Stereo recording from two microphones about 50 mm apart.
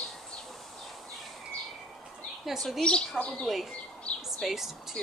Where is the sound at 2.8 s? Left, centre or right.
Centre.